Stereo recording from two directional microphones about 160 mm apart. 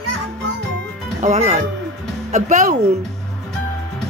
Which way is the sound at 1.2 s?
45° right (ahead or behind).